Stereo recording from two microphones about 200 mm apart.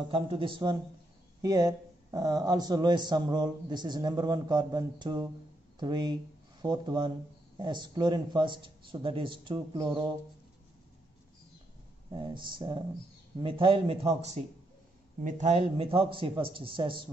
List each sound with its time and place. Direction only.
0.1 s speech: 25° right (ahead or behind)
12.1 s speech: 25° right (ahead or behind)